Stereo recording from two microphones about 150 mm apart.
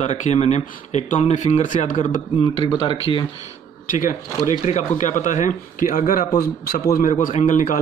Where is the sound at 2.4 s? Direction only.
30° left (ahead or behind).